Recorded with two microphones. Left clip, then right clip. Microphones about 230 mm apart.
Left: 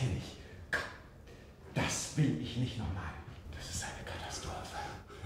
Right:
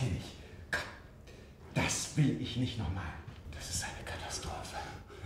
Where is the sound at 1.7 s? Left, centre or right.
Right.